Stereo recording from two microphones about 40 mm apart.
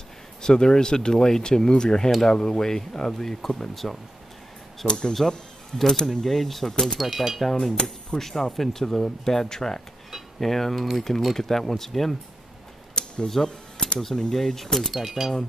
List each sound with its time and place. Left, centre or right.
0.4 s speech: centre
4.8 s speech: centre
5.7 s speech: centre
7.0 s speech: centre
7.8 s speech: centre
11.1 s speech: centre
13.3 s typewriter: centre
14.1 s speech: centre
15.0 s speech: centre